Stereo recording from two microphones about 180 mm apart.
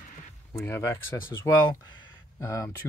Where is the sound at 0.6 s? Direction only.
15° left (ahead or behind).